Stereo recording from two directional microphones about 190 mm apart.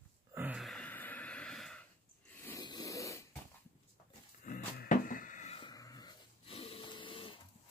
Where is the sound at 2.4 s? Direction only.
15° left (ahead or behind).